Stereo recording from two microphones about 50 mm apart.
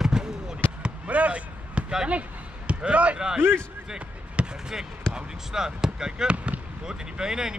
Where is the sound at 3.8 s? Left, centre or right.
Right.